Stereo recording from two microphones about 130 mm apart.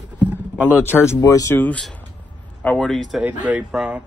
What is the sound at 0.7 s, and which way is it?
Speech, 15° left (ahead or behind).